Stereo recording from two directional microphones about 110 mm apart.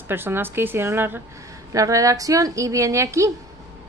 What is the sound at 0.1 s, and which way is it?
A woman's voice, 20° right (ahead or behind).